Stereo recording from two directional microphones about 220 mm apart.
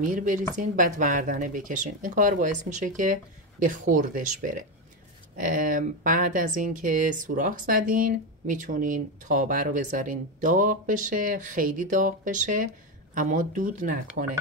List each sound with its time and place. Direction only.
0.0 s speech: 35° right (ahead or behind)
14.2 s speech: 50° right (ahead or behind)